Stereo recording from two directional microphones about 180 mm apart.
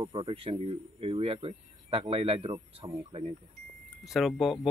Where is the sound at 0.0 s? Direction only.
25° right (ahead or behind).